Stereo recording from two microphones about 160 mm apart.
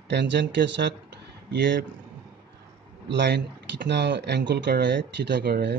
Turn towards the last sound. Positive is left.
turn(degrees=-90)